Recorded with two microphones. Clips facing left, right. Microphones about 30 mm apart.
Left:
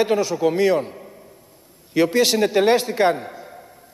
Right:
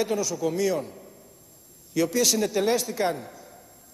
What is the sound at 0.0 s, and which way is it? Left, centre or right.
A man's voice, left.